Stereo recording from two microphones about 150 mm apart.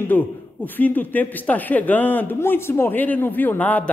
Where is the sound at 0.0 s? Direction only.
10° left (ahead or behind).